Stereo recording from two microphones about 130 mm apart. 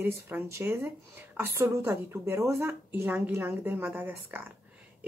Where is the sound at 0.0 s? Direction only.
15° right (ahead or behind).